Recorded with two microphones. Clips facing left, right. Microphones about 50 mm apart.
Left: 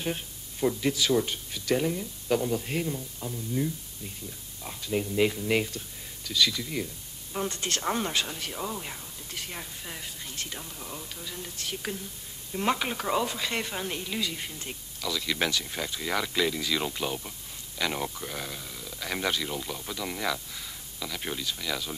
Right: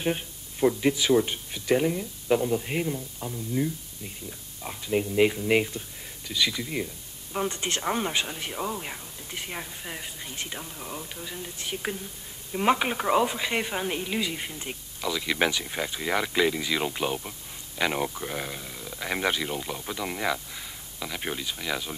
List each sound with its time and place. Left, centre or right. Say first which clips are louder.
0.0 s speech: right 4 dB; centre